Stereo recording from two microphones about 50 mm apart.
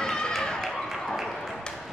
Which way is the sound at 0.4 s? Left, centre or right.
Centre.